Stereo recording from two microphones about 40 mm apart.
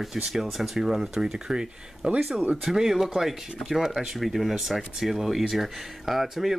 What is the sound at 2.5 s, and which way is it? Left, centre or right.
Speech, centre.